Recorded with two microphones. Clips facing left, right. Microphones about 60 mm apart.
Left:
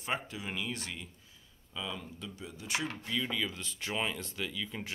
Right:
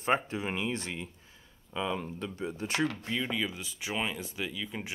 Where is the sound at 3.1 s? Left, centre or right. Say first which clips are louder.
Right 2 dB; centre.